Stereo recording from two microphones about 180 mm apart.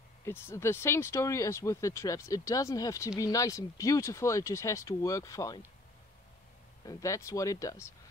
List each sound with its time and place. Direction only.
0.2 s speech: 15° left (ahead or behind)
6.8 s speech: 20° left (ahead or behind)